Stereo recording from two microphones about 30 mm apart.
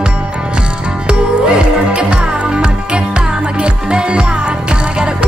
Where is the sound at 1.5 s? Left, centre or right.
Right.